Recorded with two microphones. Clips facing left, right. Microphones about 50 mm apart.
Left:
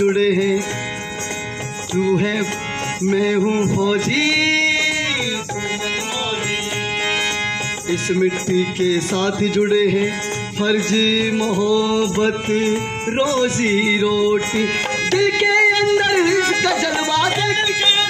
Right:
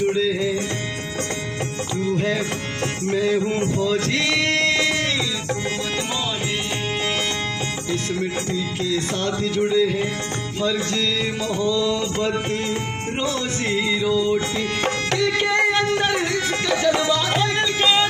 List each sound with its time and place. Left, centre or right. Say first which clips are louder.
0.0 s music: left 5 dB; left
2.1 s music: left 3 dB; left
3.4 s a man's voice: left 4 dB; left
3.7 s music: left 3 dB; left
7.9 s music: left 8 dB; left
17.0 s music: left 3 dB; left
17.7 s music: even; right